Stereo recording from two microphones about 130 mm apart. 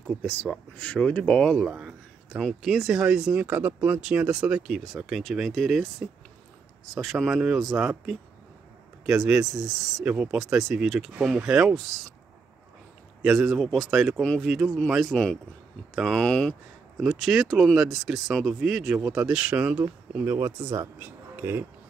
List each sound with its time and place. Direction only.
0.1 s speech: 10° left (ahead or behind)
13.2 s speech: centre (ahead or behind); by 21.6 s 15° right (ahead or behind)